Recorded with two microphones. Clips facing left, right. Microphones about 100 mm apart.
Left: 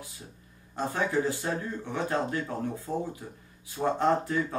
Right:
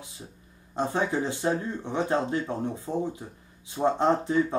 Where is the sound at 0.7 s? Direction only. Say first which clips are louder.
Right 2 dB; 20° right (ahead or behind).